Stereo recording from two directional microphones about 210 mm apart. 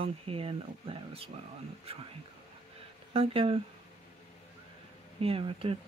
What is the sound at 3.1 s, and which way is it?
Speech, 25° right (ahead or behind).